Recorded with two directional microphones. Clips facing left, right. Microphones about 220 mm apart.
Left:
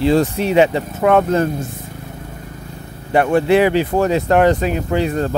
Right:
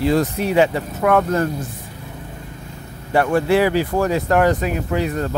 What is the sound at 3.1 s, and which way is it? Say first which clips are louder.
Speech: left 3 dB; 20° left (ahead or behind).